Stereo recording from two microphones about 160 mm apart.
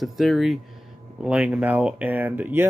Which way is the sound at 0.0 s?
Centre (ahead or behind).